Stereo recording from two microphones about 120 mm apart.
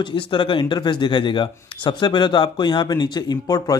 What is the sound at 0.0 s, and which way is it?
Speech, 45° left (ahead or behind).